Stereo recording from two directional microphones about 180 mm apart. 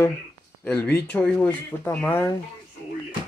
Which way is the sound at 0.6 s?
10° left (ahead or behind).